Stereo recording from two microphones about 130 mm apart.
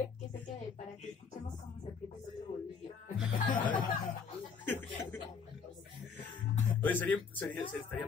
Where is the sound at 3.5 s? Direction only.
90° left.